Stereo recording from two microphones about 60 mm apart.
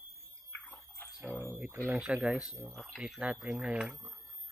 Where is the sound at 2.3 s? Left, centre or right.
Centre.